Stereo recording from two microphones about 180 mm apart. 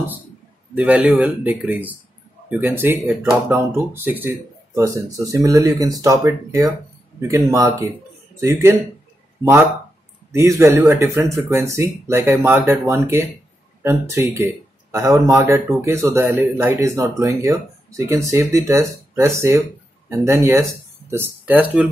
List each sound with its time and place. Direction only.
0.7 s speech: 10° right (ahead or behind)